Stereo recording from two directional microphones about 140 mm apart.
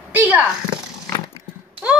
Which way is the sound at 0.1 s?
10° right (ahead or behind).